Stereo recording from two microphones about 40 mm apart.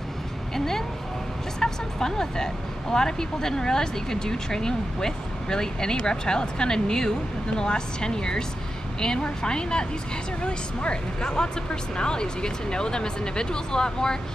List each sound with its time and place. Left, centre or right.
1.6 s speech: centre